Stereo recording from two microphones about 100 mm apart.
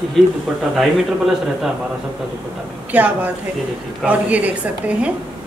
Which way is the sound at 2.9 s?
15° right (ahead or behind).